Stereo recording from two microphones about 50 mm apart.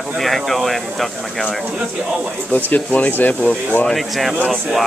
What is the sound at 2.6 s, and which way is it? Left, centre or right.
Speech, left.